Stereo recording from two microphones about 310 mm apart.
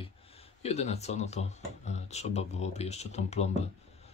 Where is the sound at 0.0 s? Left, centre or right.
Centre.